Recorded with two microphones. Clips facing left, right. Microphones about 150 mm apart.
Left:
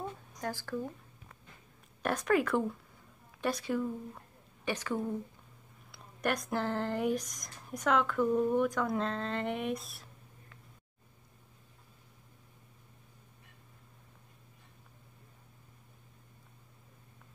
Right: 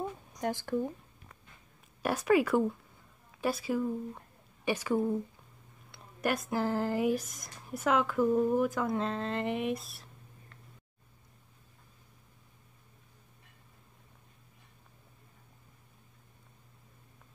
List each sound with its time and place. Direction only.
0.4 s speech: 20° right (ahead or behind)
2.0 s speech: 10° right (ahead or behind)